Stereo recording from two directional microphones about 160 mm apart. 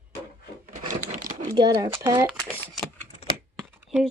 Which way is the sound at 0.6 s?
55° right (ahead or behind).